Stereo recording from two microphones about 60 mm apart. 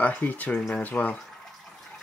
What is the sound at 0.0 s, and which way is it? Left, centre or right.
Speech, left.